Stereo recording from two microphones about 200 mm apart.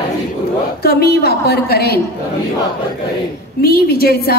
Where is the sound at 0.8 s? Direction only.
50° left (ahead or behind).